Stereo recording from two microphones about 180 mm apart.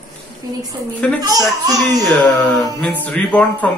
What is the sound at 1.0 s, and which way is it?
A man's voice, 5° left (ahead or behind).